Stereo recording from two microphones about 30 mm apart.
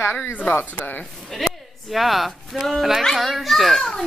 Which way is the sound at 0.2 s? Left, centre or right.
Left.